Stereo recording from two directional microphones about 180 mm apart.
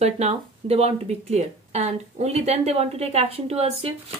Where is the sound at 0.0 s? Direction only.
35° right (ahead or behind).